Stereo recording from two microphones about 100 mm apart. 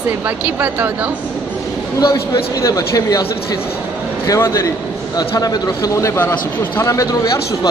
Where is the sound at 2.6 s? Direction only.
35° left (ahead or behind).